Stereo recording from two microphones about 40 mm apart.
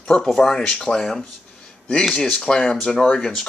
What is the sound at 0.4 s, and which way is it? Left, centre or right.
Speech, centre.